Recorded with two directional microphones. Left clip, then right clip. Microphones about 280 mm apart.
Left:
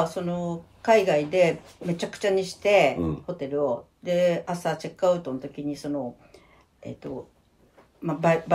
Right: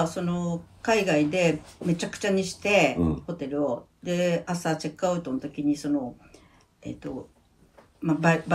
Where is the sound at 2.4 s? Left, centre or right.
Centre.